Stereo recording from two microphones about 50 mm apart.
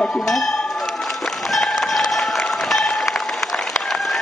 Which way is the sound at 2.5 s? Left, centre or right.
Centre.